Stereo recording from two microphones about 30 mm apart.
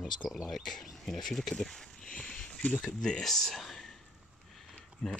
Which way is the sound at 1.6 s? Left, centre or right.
Centre.